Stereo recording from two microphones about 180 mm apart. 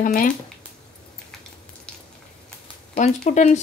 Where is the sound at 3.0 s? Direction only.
40° left (ahead or behind).